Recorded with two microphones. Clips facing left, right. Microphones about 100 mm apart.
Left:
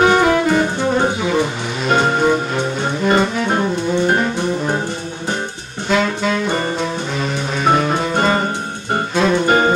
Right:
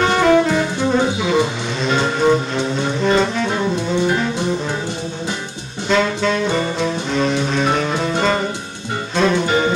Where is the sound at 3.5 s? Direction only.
50° left (ahead or behind).